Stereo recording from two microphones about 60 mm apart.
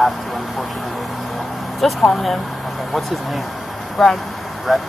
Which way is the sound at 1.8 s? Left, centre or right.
Centre.